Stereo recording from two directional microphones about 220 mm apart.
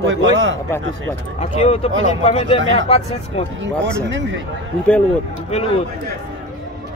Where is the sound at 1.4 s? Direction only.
30° left (ahead or behind).